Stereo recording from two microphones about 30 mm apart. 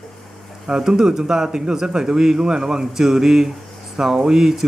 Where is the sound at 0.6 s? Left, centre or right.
Right.